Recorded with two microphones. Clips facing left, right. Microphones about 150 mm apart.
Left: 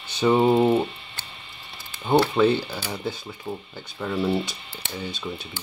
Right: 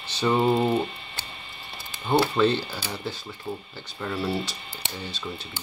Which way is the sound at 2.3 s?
10° left (ahead or behind).